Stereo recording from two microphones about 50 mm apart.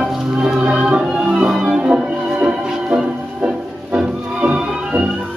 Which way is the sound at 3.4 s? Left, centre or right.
Centre.